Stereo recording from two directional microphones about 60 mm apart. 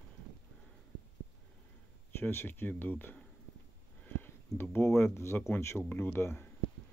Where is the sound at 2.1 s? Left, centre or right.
Left.